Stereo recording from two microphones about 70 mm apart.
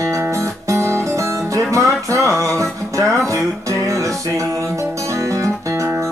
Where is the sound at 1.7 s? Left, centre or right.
Right.